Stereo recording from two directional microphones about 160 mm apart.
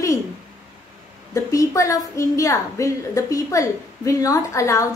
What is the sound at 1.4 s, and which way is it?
A woman's voice, 20° left (ahead or behind).